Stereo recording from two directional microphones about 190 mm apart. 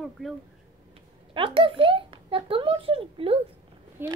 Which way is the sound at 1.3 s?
30° right (ahead or behind).